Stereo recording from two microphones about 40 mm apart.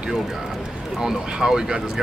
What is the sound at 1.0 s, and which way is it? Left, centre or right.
Speech, centre.